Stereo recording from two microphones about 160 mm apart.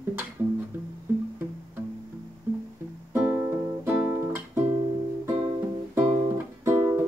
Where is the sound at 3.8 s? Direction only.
15° right (ahead or behind).